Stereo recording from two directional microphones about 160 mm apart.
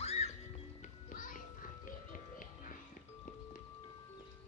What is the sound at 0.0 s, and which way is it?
Music, 40° left (ahead or behind).